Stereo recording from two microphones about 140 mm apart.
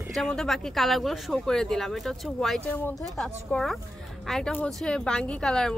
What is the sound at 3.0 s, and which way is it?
Speech, 5° left (ahead or behind).